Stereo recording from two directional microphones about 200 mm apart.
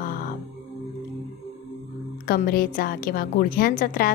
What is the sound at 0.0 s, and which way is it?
Music, 45° left (ahead or behind).